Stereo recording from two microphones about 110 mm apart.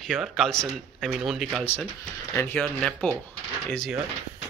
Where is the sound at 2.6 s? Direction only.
5° left (ahead or behind).